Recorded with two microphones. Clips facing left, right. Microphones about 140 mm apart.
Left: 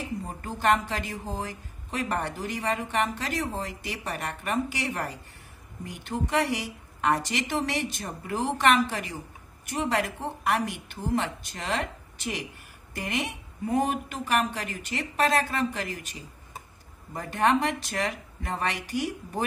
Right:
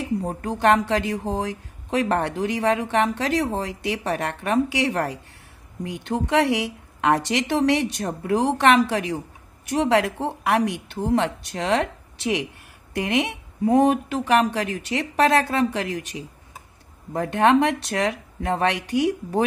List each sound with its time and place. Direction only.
0.2 s a woman's voice: 65° right (ahead or behind)
5.9 s speech: 70° right (ahead or behind)
17.1 s speech: 65° right (ahead or behind)